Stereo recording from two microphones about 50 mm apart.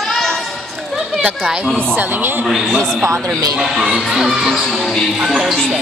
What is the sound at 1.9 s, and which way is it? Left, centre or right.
Speech, right.